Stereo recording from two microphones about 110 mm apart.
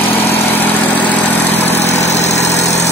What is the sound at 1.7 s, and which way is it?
Vehicle, 85° left.